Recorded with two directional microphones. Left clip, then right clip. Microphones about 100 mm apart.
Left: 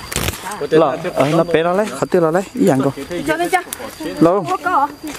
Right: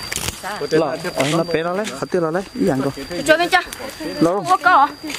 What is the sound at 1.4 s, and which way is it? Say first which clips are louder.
Speech: left 5 dB; 35° left (ahead or behind).